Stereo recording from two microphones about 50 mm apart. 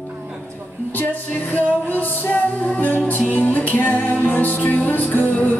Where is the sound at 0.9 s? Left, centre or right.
Left.